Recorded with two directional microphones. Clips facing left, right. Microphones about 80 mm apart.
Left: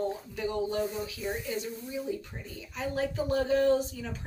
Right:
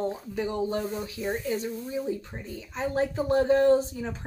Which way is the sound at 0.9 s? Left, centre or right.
Centre.